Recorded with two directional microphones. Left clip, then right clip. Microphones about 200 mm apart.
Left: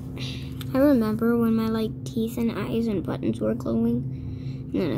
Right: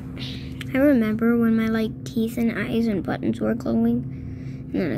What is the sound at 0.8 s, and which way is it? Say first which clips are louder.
Speech: right 2 dB; 25° right (ahead or behind).